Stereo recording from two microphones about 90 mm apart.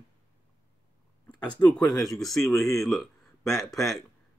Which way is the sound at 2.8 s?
Centre (ahead or behind).